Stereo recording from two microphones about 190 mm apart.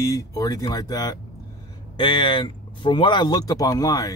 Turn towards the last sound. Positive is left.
turn(degrees=20)  # may be behind; listen again after turning